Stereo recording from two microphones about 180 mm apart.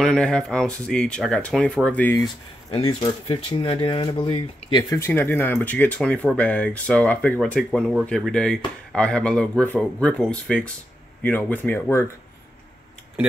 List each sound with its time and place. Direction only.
0.0 s speech: 5° left (ahead or behind)
2.7 s speech: 30° left (ahead or behind)
4.9 s speech: 15° left (ahead or behind)